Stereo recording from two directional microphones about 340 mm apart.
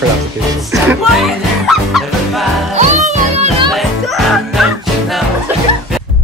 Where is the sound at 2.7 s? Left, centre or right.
Right.